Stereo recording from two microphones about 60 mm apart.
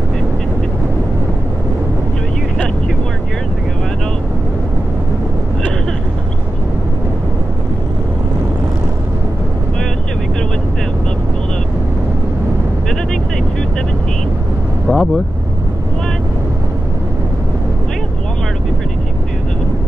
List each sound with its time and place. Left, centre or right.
14.9 s vehicle: left